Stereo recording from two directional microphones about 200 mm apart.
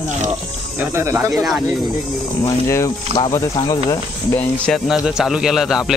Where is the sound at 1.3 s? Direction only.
Centre (ahead or behind).